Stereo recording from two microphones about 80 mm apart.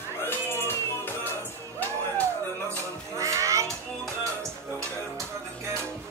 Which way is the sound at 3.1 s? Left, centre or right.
Right.